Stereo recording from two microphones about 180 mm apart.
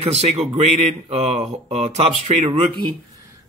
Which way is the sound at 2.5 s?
25° right (ahead or behind).